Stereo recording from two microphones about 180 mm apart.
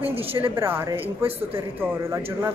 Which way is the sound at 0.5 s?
10° right (ahead or behind).